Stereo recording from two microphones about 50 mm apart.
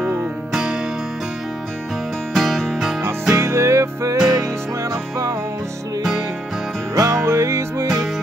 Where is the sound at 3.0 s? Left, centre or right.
Right.